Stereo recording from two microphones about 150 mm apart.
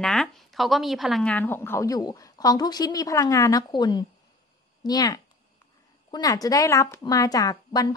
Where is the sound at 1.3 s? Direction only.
15° left (ahead or behind).